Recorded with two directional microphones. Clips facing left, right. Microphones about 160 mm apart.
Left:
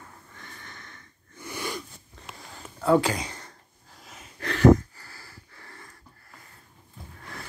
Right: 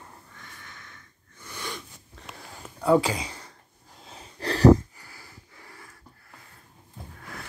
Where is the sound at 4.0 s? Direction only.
30° right (ahead or behind).